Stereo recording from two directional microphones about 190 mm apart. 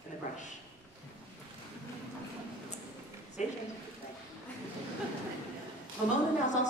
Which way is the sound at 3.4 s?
40° left (ahead or behind).